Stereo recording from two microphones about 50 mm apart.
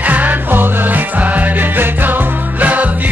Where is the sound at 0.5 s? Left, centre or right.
Right.